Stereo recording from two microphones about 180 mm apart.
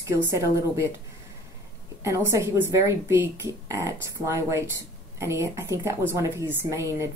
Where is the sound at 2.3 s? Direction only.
15° right (ahead or behind).